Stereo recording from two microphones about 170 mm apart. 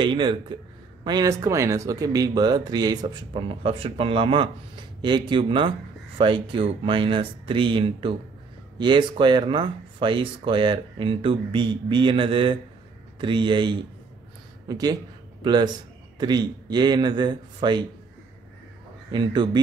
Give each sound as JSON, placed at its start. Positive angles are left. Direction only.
{"t": 0.0, "sound": "speech", "side_deg": -25}
{"t": 19.1, "sound": "speech", "side_deg": -25}